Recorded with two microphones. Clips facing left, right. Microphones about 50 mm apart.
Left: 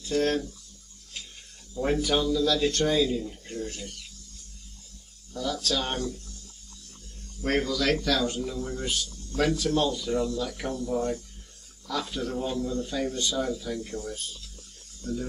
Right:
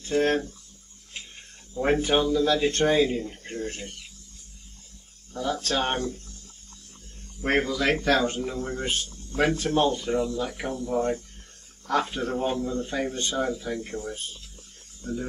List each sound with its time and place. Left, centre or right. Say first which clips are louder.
0.0 s speech: right 2 dB; right
1.1 s a sound: right 2 dB; right
1.7 s speech: right 3 dB; right
5.3 s speech: right 2 dB; right
7.4 s speech: right 2 dB; right
10.9 s speech: right 4 dB; right